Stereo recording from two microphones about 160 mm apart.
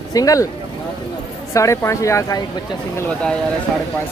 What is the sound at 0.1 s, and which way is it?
Speech, 20° left (ahead or behind).